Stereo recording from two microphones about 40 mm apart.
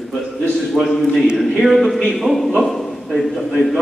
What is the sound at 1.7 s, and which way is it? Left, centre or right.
A man's voice, centre.